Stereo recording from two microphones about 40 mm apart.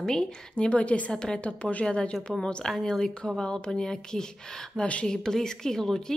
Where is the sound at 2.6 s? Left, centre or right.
Centre.